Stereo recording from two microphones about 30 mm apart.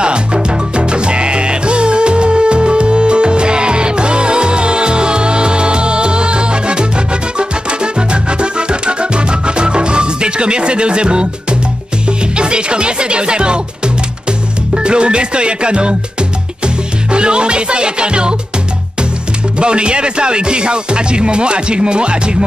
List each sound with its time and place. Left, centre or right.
0.0 s music: right
14.7 s music: right
19.6 s speech: right